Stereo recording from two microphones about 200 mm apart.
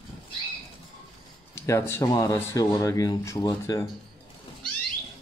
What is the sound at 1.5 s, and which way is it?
Speech, 15° left (ahead or behind).